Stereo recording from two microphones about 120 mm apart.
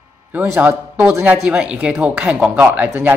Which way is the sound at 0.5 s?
15° right (ahead or behind).